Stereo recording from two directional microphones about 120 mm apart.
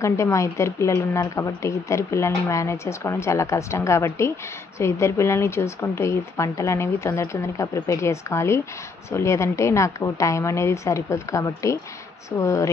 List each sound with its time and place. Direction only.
0.0 s a woman's voice: 25° left (ahead or behind)